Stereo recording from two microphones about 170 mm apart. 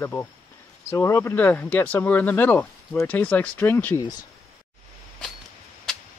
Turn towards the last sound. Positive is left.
turn(degrees=5)  # may be behind; listen again after turning